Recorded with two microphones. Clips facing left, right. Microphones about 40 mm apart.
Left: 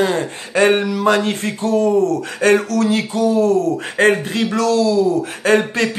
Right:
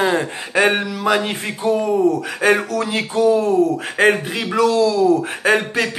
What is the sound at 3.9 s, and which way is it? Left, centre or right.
Speech, centre.